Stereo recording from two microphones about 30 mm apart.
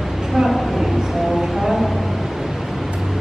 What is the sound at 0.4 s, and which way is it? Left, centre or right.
Speech, centre.